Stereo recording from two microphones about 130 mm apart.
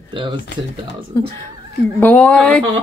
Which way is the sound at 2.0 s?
10° left (ahead or behind).